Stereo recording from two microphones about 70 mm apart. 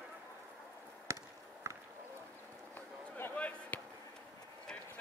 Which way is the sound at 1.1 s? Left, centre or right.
Right.